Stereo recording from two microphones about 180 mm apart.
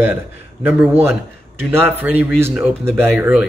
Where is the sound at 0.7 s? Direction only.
5° right (ahead or behind).